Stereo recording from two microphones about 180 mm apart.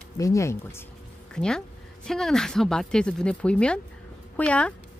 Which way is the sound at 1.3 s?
5° left (ahead or behind).